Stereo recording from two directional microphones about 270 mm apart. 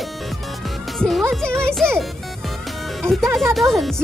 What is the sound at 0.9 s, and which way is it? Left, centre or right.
Music, centre.